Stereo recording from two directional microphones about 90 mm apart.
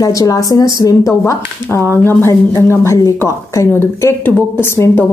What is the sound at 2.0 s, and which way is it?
A woman's voice, 25° left (ahead or behind).